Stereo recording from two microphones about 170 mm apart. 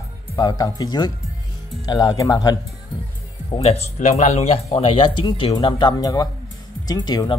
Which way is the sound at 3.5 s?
35° left (ahead or behind).